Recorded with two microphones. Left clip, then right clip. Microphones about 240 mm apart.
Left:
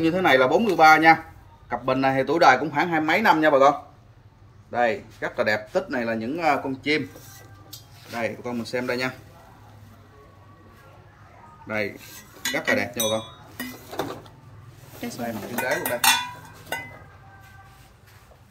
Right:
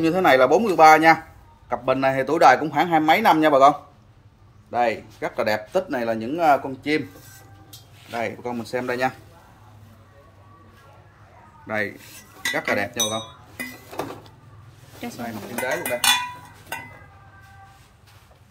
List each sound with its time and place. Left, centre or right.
0.0 s a man's voice: right
8.1 s a man's voice: centre
11.6 s speech: centre
15.0 s speech: centre